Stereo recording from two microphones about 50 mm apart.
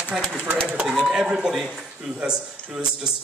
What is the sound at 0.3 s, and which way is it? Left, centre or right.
A man's voice, right.